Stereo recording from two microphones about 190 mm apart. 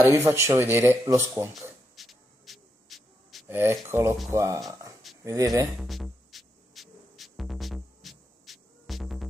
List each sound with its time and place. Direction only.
0.0 s speech: 15° right (ahead or behind)
1.5 s a sound: centre (ahead or behind)
3.4 s speech: 10° right (ahead or behind)
5.8 s music: centre (ahead or behind)